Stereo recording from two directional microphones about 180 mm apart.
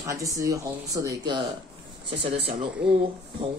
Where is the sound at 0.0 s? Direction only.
15° right (ahead or behind).